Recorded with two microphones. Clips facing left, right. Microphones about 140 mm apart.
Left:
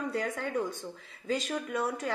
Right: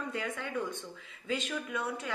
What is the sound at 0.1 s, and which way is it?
Speech, 40° left (ahead or behind).